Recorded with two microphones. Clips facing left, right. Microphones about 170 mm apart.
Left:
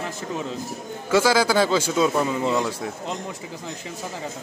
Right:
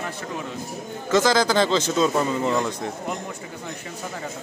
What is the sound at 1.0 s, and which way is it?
A man's voice, 10° left (ahead or behind).